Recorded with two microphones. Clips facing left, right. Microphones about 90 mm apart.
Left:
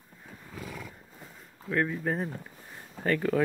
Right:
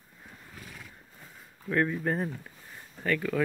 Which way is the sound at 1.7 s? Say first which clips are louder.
Right 1 dB; centre (ahead or behind).